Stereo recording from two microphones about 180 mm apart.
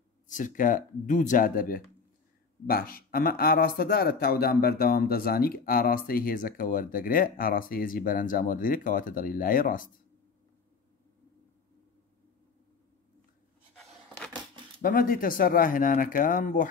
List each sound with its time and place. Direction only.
0.3 s speech: 45° left (ahead or behind)
14.8 s speech: 55° left (ahead or behind)